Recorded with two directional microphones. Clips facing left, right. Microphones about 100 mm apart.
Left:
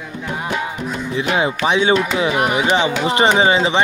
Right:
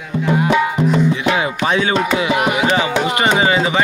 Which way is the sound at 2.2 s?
35° left (ahead or behind).